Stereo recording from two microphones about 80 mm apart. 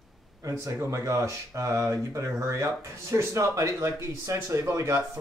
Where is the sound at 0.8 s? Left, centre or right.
Right.